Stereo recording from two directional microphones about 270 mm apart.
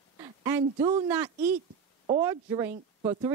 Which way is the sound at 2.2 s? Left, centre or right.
Centre.